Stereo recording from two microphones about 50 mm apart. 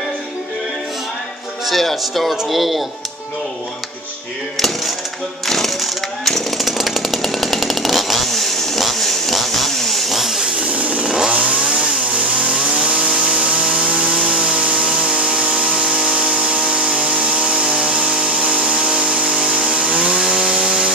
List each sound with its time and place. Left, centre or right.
1.7 s speech: centre
4.6 s speech: centre
5.5 s chainsaw: centre
10.6 s chainsaw: right
11.1 s chainsaw: centre
15.5 s a sound: centre